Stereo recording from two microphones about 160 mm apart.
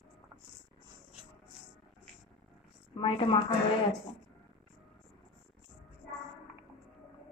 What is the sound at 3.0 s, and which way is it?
Speech, 35° left (ahead or behind).